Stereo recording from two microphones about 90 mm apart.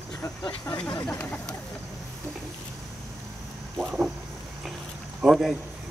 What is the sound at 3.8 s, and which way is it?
Speech, 15° right (ahead or behind).